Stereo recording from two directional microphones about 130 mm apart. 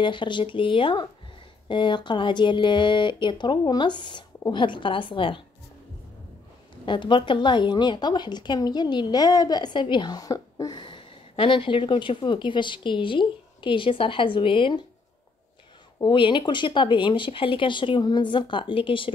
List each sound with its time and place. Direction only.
0.0 s a woman's voice: 40° left (ahead or behind)
6.9 s a woman's voice: 40° left (ahead or behind)
16.0 s a woman's voice: 35° left (ahead or behind)